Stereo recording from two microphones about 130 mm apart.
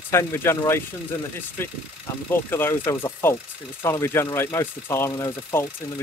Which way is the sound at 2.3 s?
15° left (ahead or behind).